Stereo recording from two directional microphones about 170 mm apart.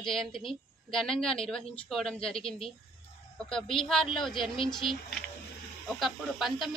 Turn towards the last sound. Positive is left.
turn(degrees=0)  # may be behind; listen again after turning